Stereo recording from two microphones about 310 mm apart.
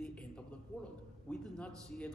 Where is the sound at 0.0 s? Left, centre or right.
Centre.